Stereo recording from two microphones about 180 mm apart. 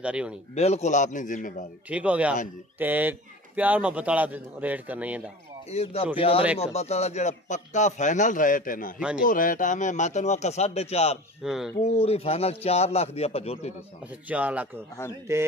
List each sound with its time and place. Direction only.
0.0 s speech: 5° right (ahead or behind)
0.6 s speech: 35° left (ahead or behind)
1.9 s speech: 5° right (ahead or behind)
5.7 s speech: 35° left (ahead or behind)
11.4 s speech: centre (ahead or behind)
11.8 s speech: 35° left (ahead or behind)
14.3 s speech: 10° right (ahead or behind)